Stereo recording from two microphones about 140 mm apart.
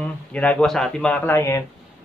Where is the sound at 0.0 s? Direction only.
10° left (ahead or behind).